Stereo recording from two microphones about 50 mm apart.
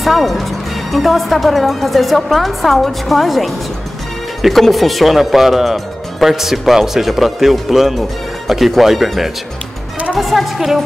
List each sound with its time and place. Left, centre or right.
0.0 s speech: centre